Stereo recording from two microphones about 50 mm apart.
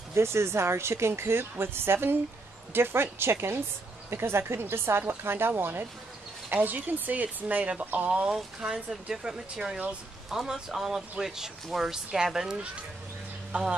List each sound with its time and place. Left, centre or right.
0.1 s speech: right
6.5 s speech: right; by 12.5 s centre